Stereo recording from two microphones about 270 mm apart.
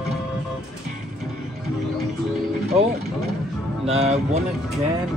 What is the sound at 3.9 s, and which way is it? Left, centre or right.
Speech, right.